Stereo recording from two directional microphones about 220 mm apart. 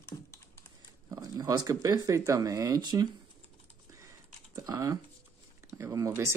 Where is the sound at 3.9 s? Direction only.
15° right (ahead or behind).